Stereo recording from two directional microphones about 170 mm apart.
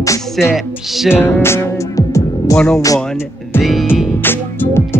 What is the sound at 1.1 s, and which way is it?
Music, 15° left (ahead or behind).